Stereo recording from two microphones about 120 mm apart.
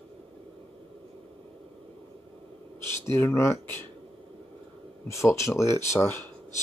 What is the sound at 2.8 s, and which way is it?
Speech, 20° left (ahead or behind).